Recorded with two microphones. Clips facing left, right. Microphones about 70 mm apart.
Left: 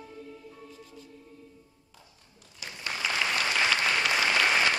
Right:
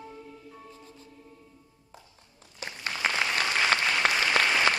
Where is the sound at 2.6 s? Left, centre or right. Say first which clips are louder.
Right 3 dB; right.